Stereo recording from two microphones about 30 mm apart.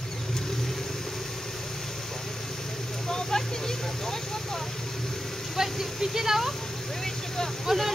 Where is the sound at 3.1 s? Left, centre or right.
Centre.